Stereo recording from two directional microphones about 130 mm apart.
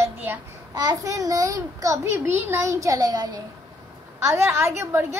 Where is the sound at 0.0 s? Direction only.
15° right (ahead or behind).